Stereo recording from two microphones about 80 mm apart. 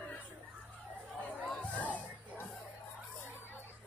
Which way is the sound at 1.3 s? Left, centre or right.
Centre.